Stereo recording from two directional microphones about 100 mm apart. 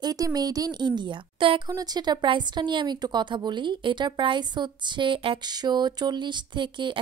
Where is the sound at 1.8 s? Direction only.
45° right (ahead or behind); by 5.5 s 60° right (ahead or behind).